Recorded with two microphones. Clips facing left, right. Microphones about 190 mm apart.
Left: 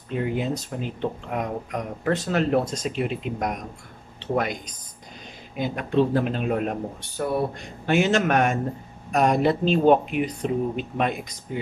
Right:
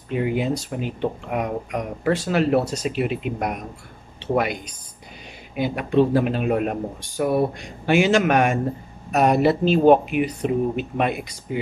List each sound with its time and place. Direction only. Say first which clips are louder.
0.1 s speech: right 3 dB; 10° right (ahead or behind)
2.6 s speech: right 3 dB; 70° right (ahead or behind)
2.9 s speech: right 3 dB; 5° right (ahead or behind)